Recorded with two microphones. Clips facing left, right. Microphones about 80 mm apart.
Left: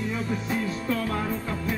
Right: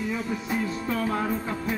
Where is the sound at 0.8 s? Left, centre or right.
Right.